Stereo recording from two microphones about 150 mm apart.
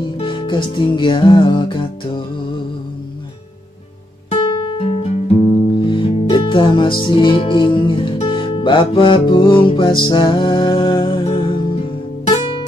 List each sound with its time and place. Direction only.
0.2 s music: 35° left (ahead or behind)
4.3 s guitar: 35° left (ahead or behind)
5.8 s music: 35° left (ahead or behind)